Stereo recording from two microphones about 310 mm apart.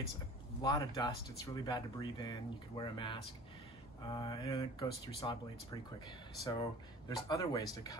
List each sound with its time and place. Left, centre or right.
0.6 s speech: centre
6.4 s speech: centre